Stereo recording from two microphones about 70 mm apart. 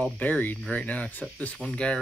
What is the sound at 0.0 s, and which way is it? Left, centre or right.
Speech, left.